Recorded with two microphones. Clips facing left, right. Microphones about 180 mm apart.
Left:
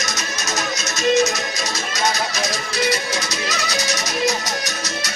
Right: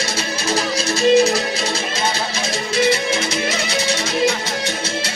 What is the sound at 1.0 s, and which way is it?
Music, 30° right (ahead or behind).